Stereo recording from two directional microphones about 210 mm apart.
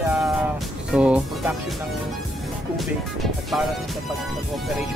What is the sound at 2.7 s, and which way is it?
Speech, centre (ahead or behind).